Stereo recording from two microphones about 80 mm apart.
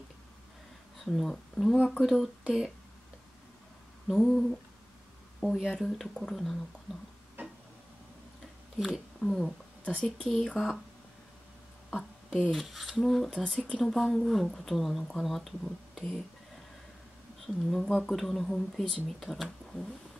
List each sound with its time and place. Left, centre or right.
1.0 s speech: centre
4.1 s speech: centre
7.4 s a sound: right
8.7 s speech: centre
11.9 s a sound: centre
12.4 s speech: centre
17.6 s speech: centre